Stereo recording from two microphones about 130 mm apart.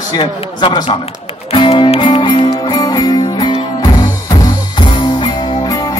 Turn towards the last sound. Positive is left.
turn(degrees=30)  # may be behind; listen again after turning